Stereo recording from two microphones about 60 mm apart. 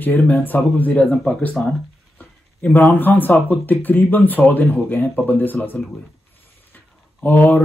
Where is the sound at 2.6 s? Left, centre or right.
Left.